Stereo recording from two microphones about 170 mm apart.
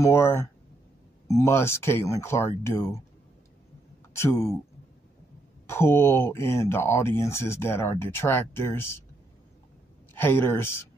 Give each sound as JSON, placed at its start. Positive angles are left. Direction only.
{"t": 0.0, "sound": "speech", "side_deg": 15}
{"t": 4.2, "sound": "speech", "side_deg": 15}
{"t": 5.7, "sound": "speech", "side_deg": 15}
{"t": 10.1, "sound": "speech", "side_deg": 10}